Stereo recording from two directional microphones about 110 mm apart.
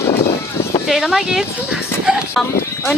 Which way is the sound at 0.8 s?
5° right (ahead or behind).